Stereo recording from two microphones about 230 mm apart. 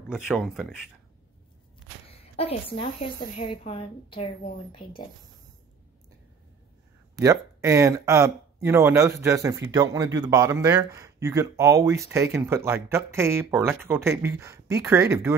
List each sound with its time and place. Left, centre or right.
0.1 s speech: centre
2.0 s a woman's voice: left
7.2 s speech: centre